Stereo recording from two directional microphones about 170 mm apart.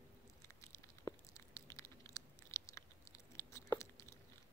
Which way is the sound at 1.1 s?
20° left (ahead or behind).